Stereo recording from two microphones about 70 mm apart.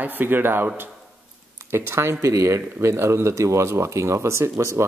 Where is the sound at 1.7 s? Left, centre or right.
Right.